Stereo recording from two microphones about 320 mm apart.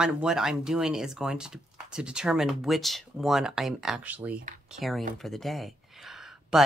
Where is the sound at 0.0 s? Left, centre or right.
Centre.